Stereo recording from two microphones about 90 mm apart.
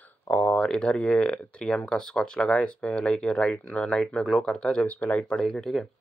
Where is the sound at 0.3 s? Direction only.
15° left (ahead or behind).